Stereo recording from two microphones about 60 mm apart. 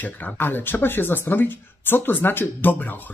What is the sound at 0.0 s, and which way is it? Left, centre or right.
Speech, left.